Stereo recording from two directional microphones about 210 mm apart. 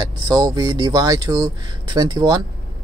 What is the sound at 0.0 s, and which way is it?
Speech, 20° right (ahead or behind).